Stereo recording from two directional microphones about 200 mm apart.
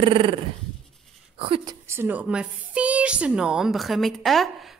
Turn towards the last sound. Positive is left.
turn(degrees=0)  # may be behind; listen again after turning